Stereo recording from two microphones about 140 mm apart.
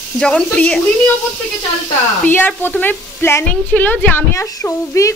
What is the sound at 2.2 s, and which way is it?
A woman's voice, 15° left (ahead or behind).